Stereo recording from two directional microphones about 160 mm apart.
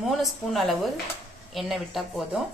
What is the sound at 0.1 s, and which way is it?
A woman's voice, centre (ahead or behind).